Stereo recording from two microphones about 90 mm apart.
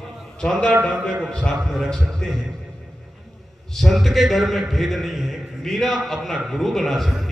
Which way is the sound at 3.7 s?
Centre (ahead or behind).